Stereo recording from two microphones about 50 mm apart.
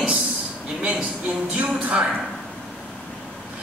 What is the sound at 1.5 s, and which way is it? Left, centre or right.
Speech, right.